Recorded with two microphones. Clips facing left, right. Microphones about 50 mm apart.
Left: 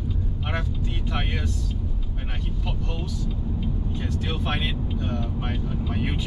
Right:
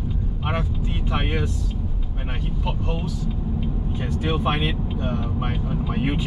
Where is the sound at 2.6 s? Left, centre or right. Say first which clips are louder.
Right 6 dB; centre.